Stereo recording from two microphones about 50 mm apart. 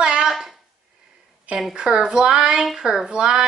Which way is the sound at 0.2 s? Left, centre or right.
Centre.